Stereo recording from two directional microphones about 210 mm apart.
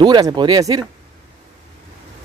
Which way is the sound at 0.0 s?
20° right (ahead or behind).